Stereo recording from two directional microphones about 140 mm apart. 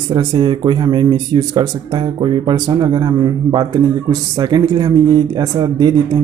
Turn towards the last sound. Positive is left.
turn(degrees=-30)  # may be behind; listen again after turning